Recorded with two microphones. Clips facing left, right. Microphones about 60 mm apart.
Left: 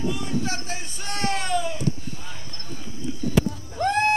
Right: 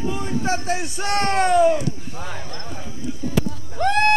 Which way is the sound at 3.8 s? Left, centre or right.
Right.